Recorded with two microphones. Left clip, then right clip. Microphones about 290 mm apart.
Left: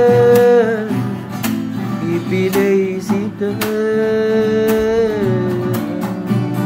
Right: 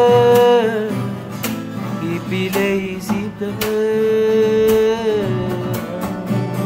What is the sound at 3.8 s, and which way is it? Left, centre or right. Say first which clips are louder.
Music: right 1 dB; centre.